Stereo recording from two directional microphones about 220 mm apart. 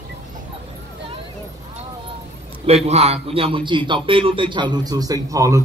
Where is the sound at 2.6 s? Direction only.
30° right (ahead or behind).